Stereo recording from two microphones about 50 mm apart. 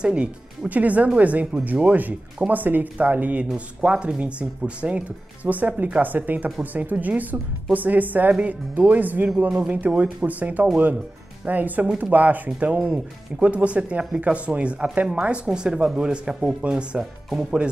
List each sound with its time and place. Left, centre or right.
0.0 s speech: right
17.3 s speech: centre